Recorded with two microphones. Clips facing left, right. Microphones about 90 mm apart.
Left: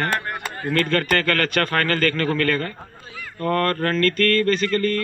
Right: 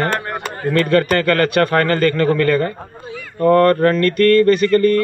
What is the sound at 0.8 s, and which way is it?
A man's voice, 20° right (ahead or behind).